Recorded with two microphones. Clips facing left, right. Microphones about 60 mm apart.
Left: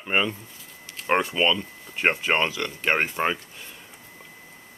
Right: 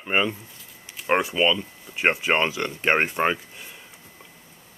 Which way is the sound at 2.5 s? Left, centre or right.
Right.